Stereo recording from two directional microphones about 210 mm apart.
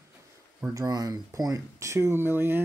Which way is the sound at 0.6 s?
15° right (ahead or behind).